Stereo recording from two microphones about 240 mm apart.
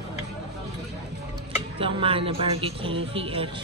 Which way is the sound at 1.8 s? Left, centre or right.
Right.